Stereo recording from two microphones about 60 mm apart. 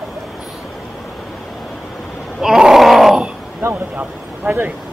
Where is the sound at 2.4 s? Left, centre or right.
Centre.